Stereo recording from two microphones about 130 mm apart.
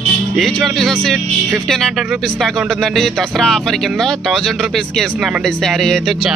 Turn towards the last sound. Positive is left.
turn(degrees=0)  # may be behind; listen again after turning